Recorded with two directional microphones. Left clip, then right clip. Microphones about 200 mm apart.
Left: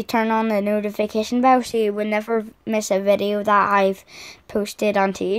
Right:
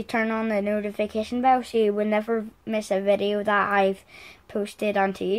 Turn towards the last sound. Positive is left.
turn(degrees=40)  # may be behind; listen again after turning